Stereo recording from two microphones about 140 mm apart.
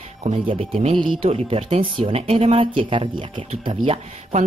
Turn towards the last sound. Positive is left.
turn(degrees=-45)  # may be behind; listen again after turning